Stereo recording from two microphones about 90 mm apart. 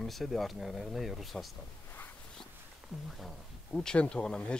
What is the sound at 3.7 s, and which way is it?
Speech, 10° left (ahead or behind).